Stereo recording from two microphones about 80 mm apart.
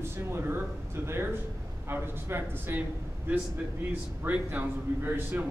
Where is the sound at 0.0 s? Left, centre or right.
Right.